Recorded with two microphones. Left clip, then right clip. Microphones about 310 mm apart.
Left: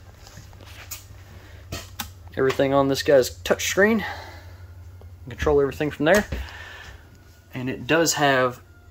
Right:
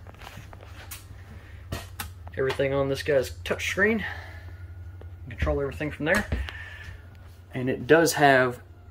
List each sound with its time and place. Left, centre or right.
2.3 s speech: centre
5.3 s speech: left